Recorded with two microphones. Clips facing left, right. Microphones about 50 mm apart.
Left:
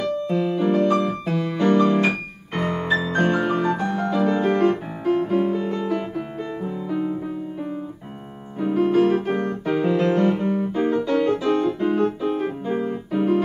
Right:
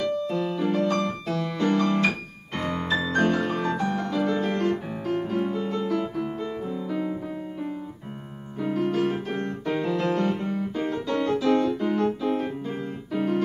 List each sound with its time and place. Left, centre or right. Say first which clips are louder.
0.2 s music: left 4 dB; centre
1.2 s piano: left 4 dB; centre
2.5 s music: left 4 dB; centre
3.4 s piano: left 4 dB; centre
5.9 s music: left 1 dB; left
8.5 s piano: left 6 dB; centre
9.8 s music: left 6 dB; centre
10.8 s piano: left 6 dB; centre
12.4 s keyboard: left 6 dB; left